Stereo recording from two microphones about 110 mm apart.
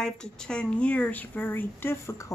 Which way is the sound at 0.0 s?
5° left (ahead or behind).